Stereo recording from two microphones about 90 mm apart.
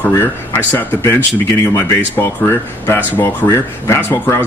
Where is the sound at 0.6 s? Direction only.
20° left (ahead or behind).